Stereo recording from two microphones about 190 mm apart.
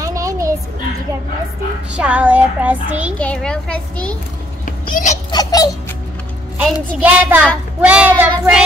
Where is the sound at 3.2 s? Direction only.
5° left (ahead or behind).